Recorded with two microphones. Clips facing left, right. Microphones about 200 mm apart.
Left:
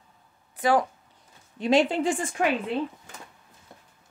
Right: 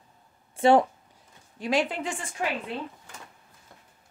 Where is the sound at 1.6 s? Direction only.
25° left (ahead or behind).